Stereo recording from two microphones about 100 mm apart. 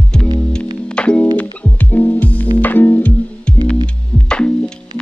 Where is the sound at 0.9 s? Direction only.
10° left (ahead or behind).